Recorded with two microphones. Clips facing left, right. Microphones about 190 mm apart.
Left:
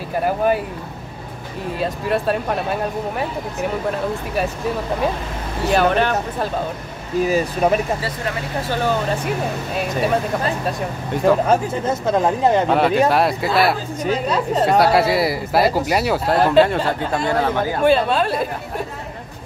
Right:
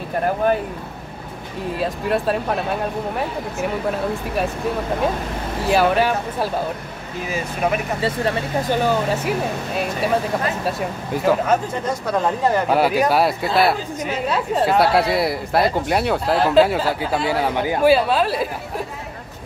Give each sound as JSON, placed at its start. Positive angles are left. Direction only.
{"t": 1.8, "sound": "a woman's voice", "side_deg": 0}
{"t": 5.7, "sound": "speech", "side_deg": -5}
{"t": 7.2, "sound": "speech", "side_deg": 35}
{"t": 8.6, "sound": "speech", "side_deg": -5}
{"t": 11.4, "sound": "speech", "side_deg": 25}
{"t": 12.6, "sound": "a woman's voice", "side_deg": -5}